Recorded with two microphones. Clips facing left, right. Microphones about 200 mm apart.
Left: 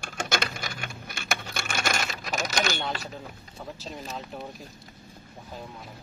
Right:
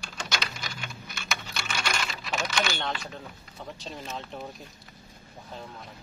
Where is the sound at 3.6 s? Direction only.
Centre (ahead or behind).